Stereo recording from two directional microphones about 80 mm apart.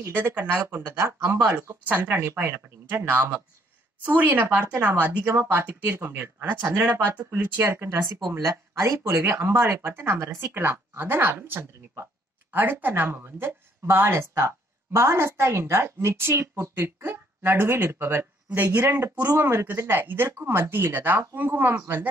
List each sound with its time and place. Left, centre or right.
0.1 s speech: right
4.0 s speech: right